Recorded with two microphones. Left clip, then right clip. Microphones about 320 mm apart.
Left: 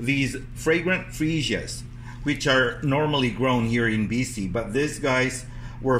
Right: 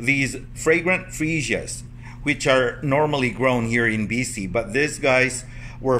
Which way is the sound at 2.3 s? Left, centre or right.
Right.